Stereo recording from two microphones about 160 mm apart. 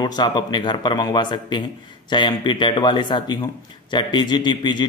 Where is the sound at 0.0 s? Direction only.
25° left (ahead or behind).